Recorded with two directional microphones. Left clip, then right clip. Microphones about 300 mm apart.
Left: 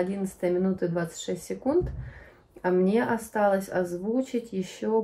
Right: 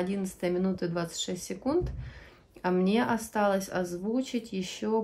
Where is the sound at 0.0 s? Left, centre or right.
Centre.